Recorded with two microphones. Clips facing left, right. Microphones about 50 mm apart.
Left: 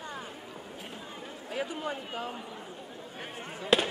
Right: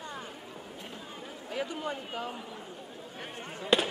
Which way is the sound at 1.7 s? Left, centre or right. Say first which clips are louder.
Even; centre.